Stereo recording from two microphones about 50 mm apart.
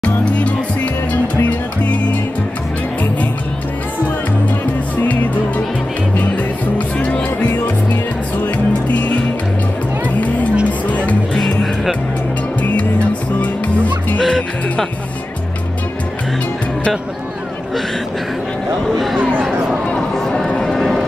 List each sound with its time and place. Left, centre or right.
0.0 s music: left
4.9 s music: left
8.8 s music: left
11.3 s music: centre
14.2 s music: centre
20.0 s a sound: centre